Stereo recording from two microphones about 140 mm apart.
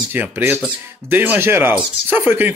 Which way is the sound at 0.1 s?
15° right (ahead or behind).